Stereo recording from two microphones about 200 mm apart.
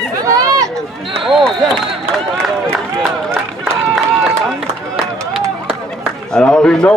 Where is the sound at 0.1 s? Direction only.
15° right (ahead or behind).